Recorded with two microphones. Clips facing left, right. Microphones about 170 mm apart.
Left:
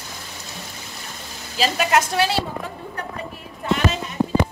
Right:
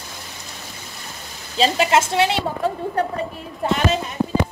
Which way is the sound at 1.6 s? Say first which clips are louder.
Right 2 dB; 25° right (ahead or behind).